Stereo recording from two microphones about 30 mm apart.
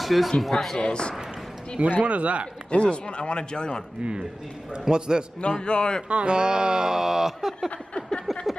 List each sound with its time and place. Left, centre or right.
0.0 s speech: centre
0.7 s a man's voice: left
1.8 s speech: right
2.7 s a man's voice: left
4.0 s a man's voice: right
5.6 s a man's voice: left
6.0 s speech: right; by 7.7 s centre
8.3 s a sound: centre